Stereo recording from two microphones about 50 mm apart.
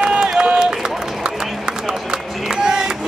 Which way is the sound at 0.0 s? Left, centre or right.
Centre.